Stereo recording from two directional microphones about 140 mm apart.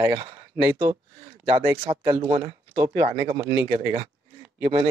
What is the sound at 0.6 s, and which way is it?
Speech, 15° right (ahead or behind).